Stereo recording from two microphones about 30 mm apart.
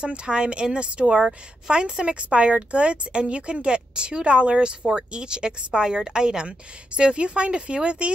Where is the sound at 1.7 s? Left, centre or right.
Right.